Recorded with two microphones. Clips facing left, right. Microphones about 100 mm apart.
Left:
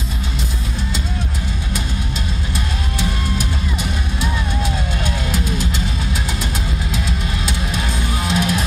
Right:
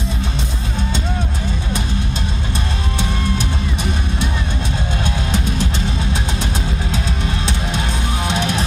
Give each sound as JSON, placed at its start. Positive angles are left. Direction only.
{"t": 8.3, "sound": "music", "side_deg": -25}